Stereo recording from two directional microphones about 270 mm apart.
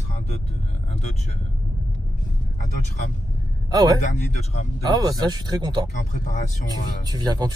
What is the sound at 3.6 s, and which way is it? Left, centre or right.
A man's voice, centre.